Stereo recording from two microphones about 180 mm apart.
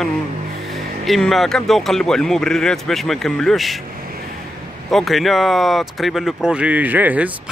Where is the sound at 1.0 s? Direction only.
Centre (ahead or behind).